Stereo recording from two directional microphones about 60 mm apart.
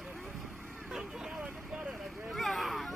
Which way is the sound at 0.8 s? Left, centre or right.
Centre.